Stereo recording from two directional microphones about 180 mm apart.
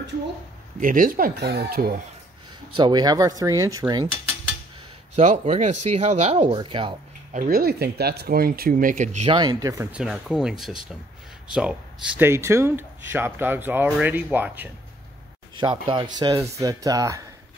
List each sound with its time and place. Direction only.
0.7 s speech: 50° right (ahead or behind)
2.7 s speech: 25° right (ahead or behind)
5.1 s speech: 40° right (ahead or behind)
7.3 s speech: 55° right (ahead or behind)
9.3 s speech: 25° right (ahead or behind)
9.9 s speech: centre (ahead or behind)
15.5 s speech: 25° right (ahead or behind)